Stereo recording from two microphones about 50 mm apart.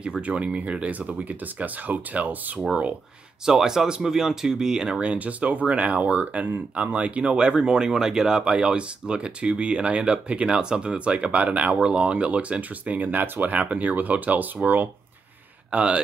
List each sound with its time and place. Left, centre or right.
0.0 s speech: right
3.4 s speech: centre
5.1 s speech: right
15.7 s speech: right